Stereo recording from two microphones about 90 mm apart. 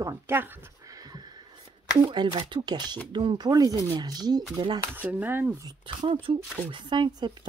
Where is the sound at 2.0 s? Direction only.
75° right (ahead or behind).